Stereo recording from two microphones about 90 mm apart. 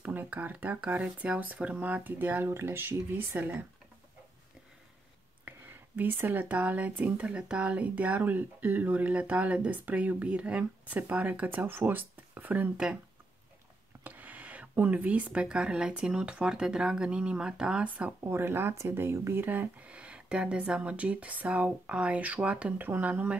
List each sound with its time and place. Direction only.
0.0 s speech: 20° right (ahead or behind)
5.9 s speech: 20° right (ahead or behind)
14.0 s speech: 15° right (ahead or behind)
18.2 s speech: 25° right (ahead or behind)